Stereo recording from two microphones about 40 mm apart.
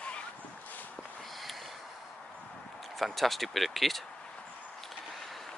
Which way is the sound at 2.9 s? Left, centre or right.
Centre.